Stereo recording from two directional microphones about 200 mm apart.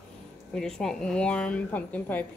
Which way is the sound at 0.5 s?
5° left (ahead or behind).